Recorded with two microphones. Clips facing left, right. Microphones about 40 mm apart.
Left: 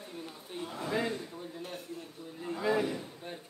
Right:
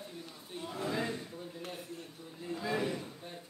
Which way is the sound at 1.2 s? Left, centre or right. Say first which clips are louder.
Left 1 dB; centre.